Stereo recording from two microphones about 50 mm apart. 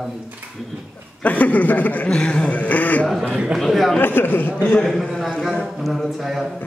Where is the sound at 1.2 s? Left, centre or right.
Left.